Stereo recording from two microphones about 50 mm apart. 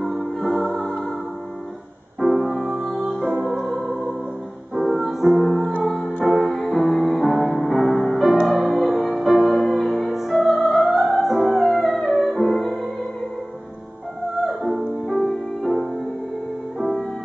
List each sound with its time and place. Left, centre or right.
0.0 s music: centre
2.1 s music: centre
2.7 s music: centre
14.4 s music: centre